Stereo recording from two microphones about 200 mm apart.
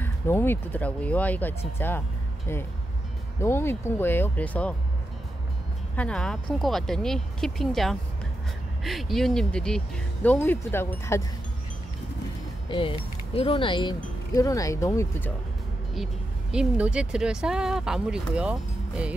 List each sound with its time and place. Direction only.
0.0 s speech: 10° left (ahead or behind)
5.9 s speech: 5° left (ahead or behind)
12.6 s speech: 25° left (ahead or behind)
16.5 s speech: 5° right (ahead or behind)